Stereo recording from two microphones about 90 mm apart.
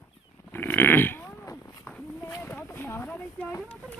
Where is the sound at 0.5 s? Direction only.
25° left (ahead or behind).